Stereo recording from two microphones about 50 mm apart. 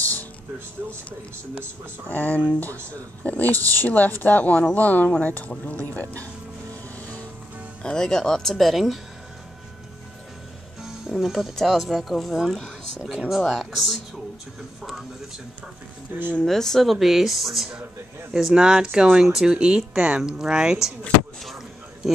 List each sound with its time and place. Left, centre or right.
2.0 s speech: left
7.8 s speech: centre
10.8 s music: centre
11.5 s speech: centre
16.1 s speech: right
16.4 s speech: centre
18.3 s speech: centre
19.2 s speech: centre
19.5 s speech: centre